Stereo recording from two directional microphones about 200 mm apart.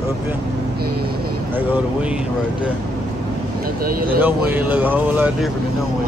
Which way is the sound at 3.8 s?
45° right (ahead or behind).